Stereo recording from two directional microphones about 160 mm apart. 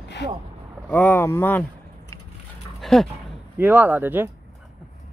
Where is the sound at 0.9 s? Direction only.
10° left (ahead or behind).